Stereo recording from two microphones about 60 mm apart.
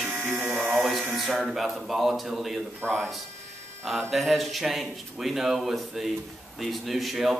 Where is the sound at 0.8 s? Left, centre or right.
Centre.